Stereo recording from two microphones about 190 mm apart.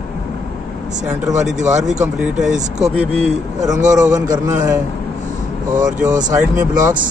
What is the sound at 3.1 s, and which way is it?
Speech, 30° right (ahead or behind).